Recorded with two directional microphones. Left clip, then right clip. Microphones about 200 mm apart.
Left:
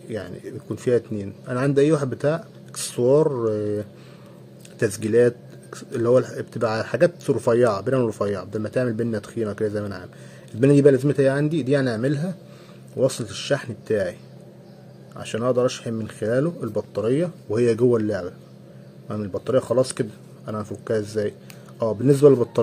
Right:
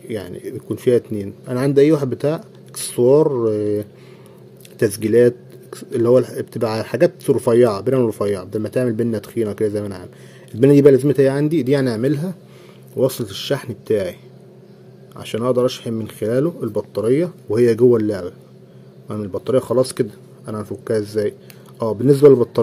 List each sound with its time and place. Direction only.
0.1 s speech: 25° right (ahead or behind)
15.1 s speech: 25° right (ahead or behind)